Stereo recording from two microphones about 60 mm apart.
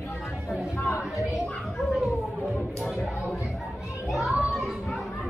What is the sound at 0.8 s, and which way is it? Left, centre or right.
Speech, left.